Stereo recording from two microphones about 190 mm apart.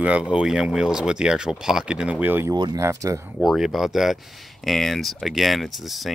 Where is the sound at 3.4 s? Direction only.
Centre (ahead or behind).